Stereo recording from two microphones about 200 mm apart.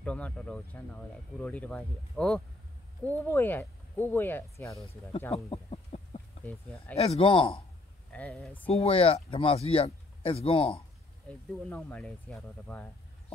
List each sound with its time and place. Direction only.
0.0 s speech: 5° left (ahead or behind)
5.3 s a sound: 30° left (ahead or behind)
6.4 s speech: 5° left (ahead or behind)
7.0 s speech: 30° left (ahead or behind)
8.1 s speech: 5° left (ahead or behind)
8.6 s speech: 30° left (ahead or behind)
11.5 s speech: 5° left (ahead or behind)